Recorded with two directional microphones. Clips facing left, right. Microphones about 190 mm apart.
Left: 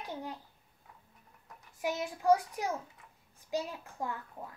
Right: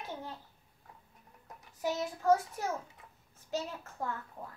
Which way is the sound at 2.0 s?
15° left (ahead or behind).